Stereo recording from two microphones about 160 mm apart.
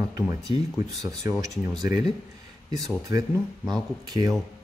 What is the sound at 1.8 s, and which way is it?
Speech, 25° right (ahead or behind).